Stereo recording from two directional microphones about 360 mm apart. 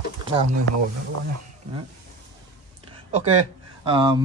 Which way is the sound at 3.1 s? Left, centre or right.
Centre.